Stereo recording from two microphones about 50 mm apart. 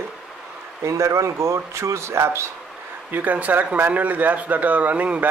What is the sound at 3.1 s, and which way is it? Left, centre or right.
A man's voice, right.